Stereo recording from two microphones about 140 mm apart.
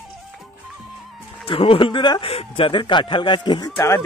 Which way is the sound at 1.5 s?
40° left (ahead or behind).